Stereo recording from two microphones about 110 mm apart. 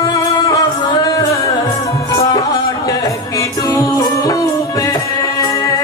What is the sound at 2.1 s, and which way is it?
Music, 35° left (ahead or behind).